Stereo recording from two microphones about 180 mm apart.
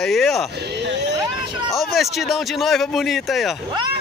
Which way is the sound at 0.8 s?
75° right (ahead or behind).